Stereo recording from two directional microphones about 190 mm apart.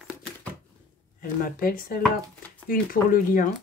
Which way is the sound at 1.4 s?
50° left (ahead or behind).